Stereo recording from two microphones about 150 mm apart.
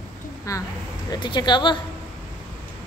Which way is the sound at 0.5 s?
20° left (ahead or behind).